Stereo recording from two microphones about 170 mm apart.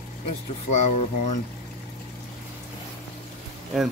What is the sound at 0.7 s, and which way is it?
Speech, 45° left (ahead or behind).